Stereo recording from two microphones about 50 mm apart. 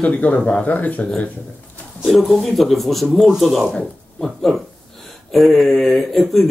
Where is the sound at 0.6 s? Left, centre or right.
Left.